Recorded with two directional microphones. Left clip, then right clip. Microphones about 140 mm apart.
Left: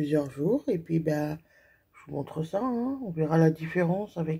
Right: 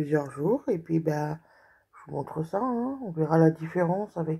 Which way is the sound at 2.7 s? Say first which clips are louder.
Right 1 dB; 30° right (ahead or behind).